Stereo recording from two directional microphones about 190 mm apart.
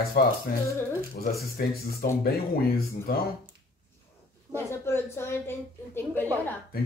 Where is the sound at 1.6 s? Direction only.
55° left (ahead or behind).